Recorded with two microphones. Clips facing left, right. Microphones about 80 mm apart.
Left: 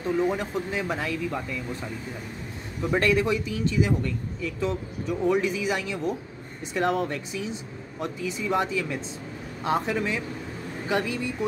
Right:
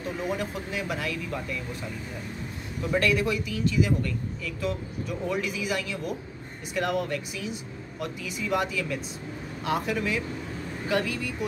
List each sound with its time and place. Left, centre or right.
0.2 s speech: left
2.9 s a man's voice: left